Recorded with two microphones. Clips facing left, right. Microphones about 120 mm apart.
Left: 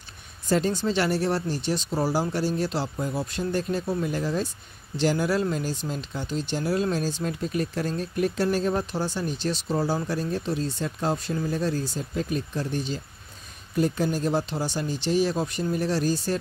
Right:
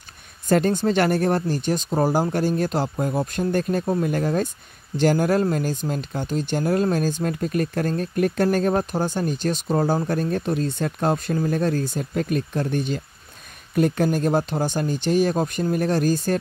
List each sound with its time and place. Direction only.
0.5 s speech: 55° right (ahead or behind)